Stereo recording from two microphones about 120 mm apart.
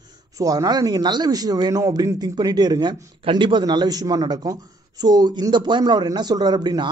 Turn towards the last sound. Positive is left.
turn(degrees=-35)  # may be behind; listen again after turning